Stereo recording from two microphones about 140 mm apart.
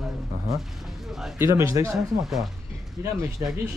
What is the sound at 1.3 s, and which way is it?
Speech, 20° right (ahead or behind).